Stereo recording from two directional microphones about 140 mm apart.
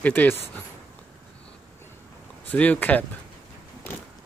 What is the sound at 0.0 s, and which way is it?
Speech, 10° left (ahead or behind).